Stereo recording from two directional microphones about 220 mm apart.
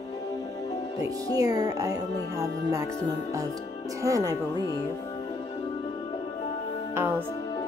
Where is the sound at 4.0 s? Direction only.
15° right (ahead or behind).